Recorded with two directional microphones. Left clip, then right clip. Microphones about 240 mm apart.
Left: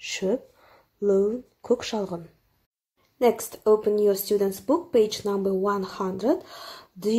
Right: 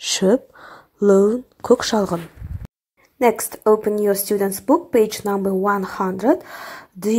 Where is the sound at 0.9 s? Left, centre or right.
Centre.